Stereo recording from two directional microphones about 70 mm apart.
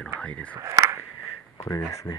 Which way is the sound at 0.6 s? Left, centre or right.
Right.